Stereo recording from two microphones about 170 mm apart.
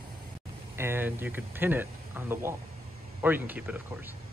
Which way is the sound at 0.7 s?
15° right (ahead or behind).